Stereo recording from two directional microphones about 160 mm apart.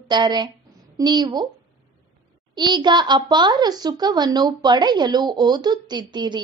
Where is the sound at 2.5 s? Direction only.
25° right (ahead or behind).